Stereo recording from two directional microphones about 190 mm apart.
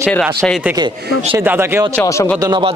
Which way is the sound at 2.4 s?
25° right (ahead or behind).